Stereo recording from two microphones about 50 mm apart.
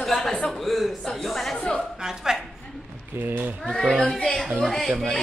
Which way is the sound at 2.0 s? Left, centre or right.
Centre.